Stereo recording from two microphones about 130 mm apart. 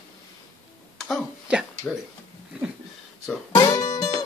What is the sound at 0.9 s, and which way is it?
Speech, centre (ahead or behind).